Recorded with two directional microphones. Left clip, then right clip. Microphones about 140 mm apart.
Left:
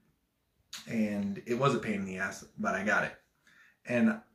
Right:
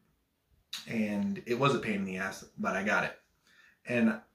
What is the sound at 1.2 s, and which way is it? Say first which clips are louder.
Speech: right 1 dB; 5° right (ahead or behind).